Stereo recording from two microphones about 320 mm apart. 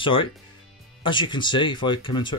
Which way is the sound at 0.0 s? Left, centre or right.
Centre.